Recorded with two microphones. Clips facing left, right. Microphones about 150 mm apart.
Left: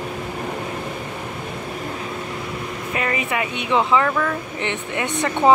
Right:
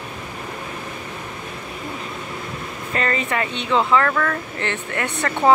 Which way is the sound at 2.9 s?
10° left (ahead or behind).